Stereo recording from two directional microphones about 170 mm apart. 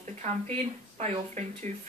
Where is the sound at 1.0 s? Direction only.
40° right (ahead or behind).